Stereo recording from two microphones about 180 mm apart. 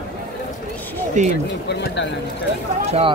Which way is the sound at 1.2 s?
45° right (ahead or behind).